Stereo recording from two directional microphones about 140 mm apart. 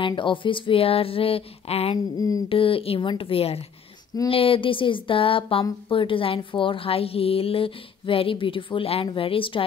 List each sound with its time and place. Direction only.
0.0 s speech: 35° left (ahead or behind)
2.1 s a sound: 25° left (ahead or behind)
2.5 s speech: 40° left (ahead or behind)